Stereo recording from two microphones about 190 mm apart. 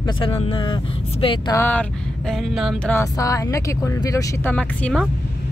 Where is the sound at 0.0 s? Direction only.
30° left (ahead or behind).